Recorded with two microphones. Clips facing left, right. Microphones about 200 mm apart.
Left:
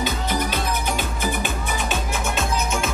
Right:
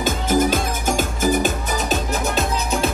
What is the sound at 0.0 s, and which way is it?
Music, 45° right (ahead or behind).